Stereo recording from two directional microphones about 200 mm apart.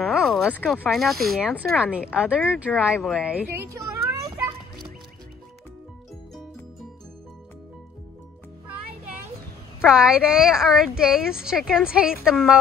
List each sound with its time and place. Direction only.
0.1 s a woman's voice: centre (ahead or behind)
3.4 s a child's voice: 50° right (ahead or behind)
3.7 s a sound: 15° right (ahead or behind)
9.8 s a woman's voice: 5° right (ahead or behind)